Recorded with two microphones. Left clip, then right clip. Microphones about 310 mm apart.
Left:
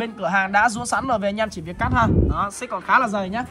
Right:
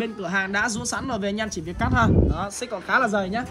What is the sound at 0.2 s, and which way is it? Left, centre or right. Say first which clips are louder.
A man's voice: left 7 dB; centre.